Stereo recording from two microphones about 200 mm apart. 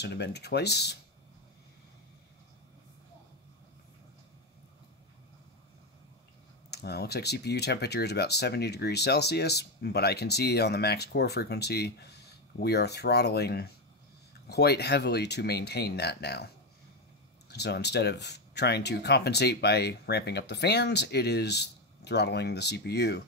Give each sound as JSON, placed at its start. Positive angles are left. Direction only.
{"t": 0.0, "sound": "speech", "side_deg": 55}
{"t": 6.7, "sound": "speech", "side_deg": 55}
{"t": 17.5, "sound": "speech", "side_deg": 55}